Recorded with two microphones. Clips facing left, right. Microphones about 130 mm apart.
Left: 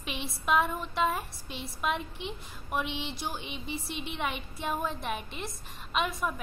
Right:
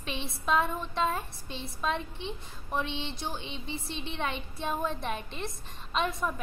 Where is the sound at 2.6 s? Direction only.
15° left (ahead or behind).